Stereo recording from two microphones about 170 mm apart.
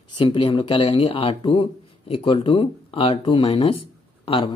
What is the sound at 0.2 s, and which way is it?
A man's voice, 30° left (ahead or behind).